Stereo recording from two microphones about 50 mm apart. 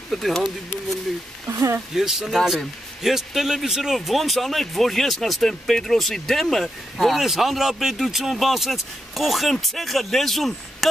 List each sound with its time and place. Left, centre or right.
0.1 s speech: centre
1.5 s speech: right
2.0 s speech: centre